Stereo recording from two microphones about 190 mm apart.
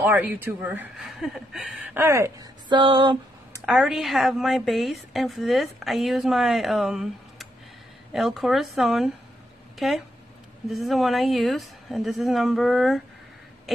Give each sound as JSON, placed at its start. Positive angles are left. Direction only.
{"t": 0.0, "sound": "a woman's voice", "side_deg": -10}
{"t": 2.0, "sound": "a woman's voice", "side_deg": -15}
{"t": 3.6, "sound": "a woman's voice", "side_deg": -5}
{"t": 13.7, "sound": "a sound", "side_deg": 0}